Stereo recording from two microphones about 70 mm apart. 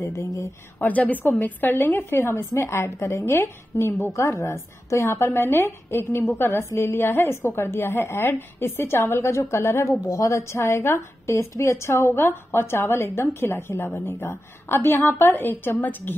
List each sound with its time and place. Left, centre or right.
0.0 s speech: left
0.7 s a woman's voice: left
10.0 s speech: left